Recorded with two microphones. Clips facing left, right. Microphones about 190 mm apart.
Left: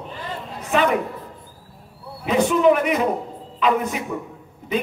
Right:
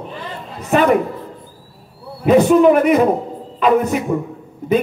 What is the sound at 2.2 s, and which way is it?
A man's voice, 45° right (ahead or behind).